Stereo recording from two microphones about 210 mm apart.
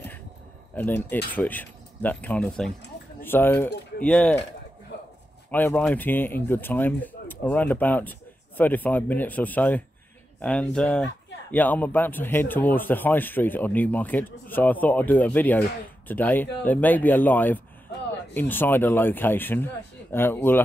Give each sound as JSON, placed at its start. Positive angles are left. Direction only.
{"t": 0.7, "sound": "speech", "side_deg": 10}
{"t": 5.5, "sound": "speech", "side_deg": 10}